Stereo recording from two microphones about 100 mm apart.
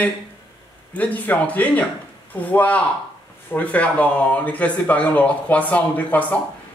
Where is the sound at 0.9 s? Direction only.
15° left (ahead or behind).